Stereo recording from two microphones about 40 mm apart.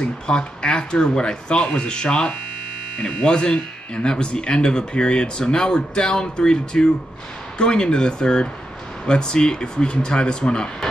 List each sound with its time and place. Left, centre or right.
0.0 s speech: left